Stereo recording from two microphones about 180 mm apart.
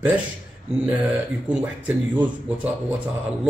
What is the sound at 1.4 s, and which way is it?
Speech, 10° right (ahead or behind).